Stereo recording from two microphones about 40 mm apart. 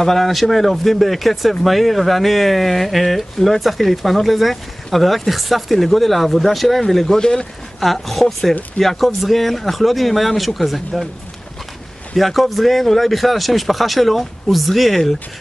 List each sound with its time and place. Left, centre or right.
0.0 s speech: centre
7.8 s speech: centre
12.2 s speech: centre